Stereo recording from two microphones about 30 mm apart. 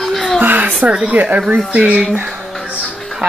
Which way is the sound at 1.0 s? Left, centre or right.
Right.